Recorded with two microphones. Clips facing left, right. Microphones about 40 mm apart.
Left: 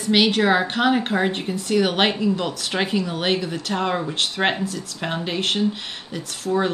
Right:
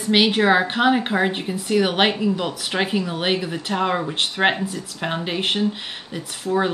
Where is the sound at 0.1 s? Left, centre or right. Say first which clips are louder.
Right 1 dB; centre.